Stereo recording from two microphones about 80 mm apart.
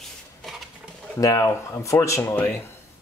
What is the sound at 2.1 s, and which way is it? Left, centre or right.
Speech, left.